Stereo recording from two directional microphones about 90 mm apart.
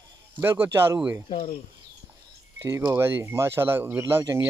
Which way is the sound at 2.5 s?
35° right (ahead or behind).